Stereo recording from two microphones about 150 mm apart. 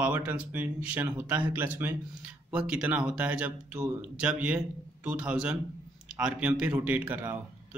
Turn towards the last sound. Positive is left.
turn(degrees=-10)  # may be behind; listen again after turning